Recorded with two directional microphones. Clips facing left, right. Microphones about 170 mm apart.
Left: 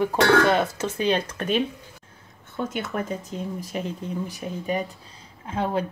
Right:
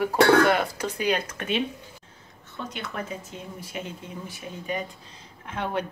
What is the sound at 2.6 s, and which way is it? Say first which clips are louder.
Speech: left 6 dB; 50° left (ahead or behind).